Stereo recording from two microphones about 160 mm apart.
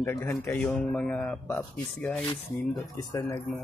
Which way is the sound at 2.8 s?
20° left (ahead or behind).